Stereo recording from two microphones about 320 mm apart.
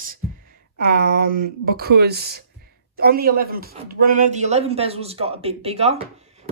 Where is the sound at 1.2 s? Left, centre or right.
Right.